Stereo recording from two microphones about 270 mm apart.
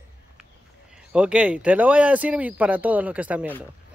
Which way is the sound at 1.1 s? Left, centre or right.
Centre.